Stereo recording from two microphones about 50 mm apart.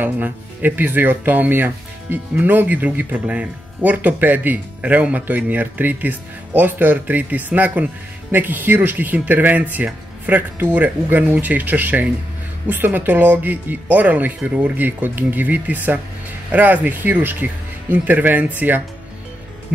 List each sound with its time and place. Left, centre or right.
0.0 s speech: right
8.3 s speech: right